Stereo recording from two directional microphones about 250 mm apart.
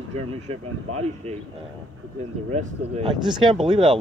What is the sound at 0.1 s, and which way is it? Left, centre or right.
Speech, right.